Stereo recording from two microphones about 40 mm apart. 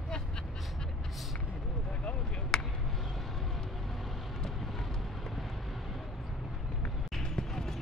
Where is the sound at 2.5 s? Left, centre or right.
Centre.